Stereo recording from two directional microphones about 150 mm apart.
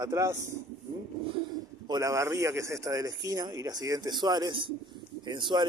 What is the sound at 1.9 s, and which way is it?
Speech, 20° right (ahead or behind).